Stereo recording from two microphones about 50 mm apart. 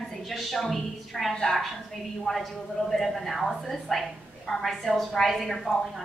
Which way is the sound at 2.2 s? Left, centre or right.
Centre.